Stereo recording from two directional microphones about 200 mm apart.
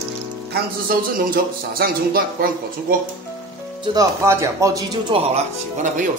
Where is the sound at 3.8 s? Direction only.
20° right (ahead or behind).